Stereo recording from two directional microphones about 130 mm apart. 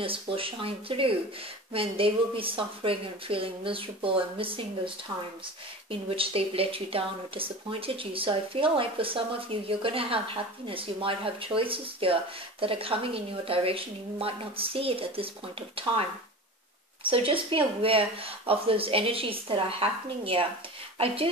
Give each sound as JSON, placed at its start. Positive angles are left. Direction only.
{"t": 0.0, "sound": "speech", "side_deg": -45}
{"t": 17.1, "sound": "speech", "side_deg": -45}